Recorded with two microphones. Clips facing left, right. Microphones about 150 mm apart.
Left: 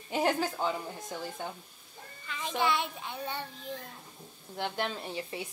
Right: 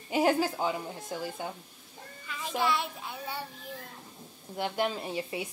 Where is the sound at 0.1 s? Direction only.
10° right (ahead or behind).